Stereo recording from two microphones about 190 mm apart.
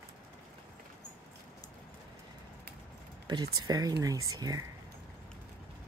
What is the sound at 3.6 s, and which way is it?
Speech, 20° right (ahead or behind).